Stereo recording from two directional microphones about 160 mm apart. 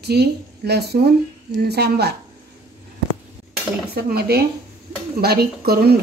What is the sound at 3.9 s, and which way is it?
Speech, 75° right (ahead or behind).